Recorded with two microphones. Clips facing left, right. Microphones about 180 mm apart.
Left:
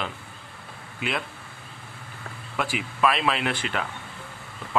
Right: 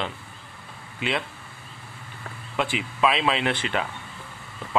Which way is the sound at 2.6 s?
Centre (ahead or behind).